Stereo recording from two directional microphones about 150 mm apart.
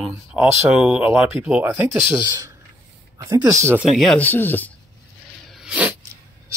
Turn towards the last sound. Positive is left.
turn(degrees=-5)  # may be behind; listen again after turning